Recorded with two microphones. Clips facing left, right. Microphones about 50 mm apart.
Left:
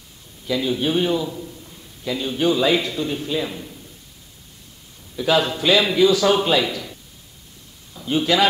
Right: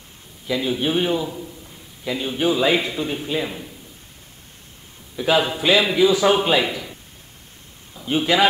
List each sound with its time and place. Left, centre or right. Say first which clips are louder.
0.5 s a man's voice: even; centre
5.1 s a man's voice: even; centre